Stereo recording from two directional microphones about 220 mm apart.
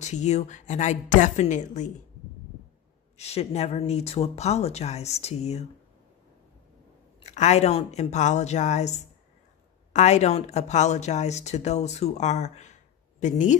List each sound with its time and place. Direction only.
0.0 s speech: 30° left (ahead or behind)
3.2 s speech: 30° left (ahead or behind)
7.2 s speech: 30° left (ahead or behind)